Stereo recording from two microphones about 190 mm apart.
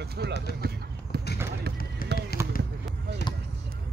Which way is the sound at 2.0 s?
50° left (ahead or behind).